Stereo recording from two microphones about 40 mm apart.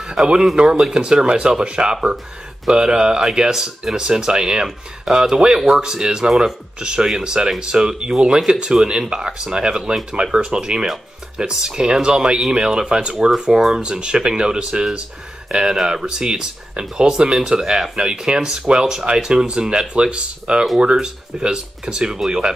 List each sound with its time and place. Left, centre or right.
0.0 s speech: centre